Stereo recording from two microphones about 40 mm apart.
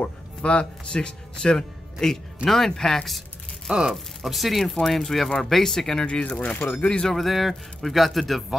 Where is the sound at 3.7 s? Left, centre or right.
Centre.